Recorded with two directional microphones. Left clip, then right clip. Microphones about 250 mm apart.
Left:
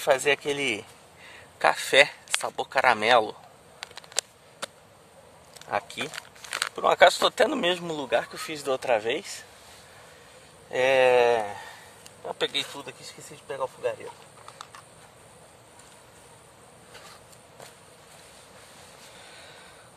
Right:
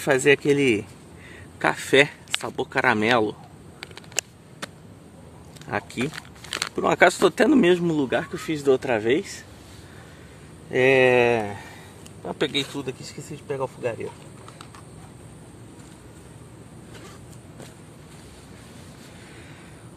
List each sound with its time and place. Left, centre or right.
0.0 s speech: centre
3.8 s a sound: centre
5.7 s speech: centre
10.7 s speech: centre
11.4 s speech: centre